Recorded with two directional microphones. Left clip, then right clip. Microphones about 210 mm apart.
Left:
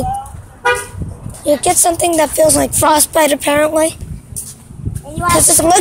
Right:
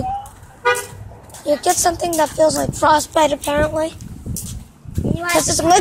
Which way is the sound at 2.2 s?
30° left (ahead or behind).